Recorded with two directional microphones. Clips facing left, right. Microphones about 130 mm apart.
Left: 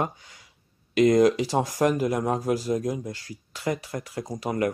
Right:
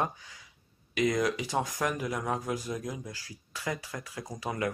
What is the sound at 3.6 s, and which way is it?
Speech, 30° left (ahead or behind).